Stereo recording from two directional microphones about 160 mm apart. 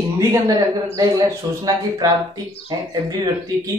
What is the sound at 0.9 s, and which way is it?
A man's voice, 20° right (ahead or behind).